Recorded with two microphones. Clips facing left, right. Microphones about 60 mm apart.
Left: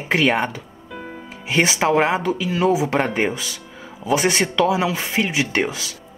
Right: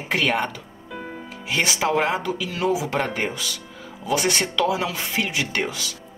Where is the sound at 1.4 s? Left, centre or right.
Left.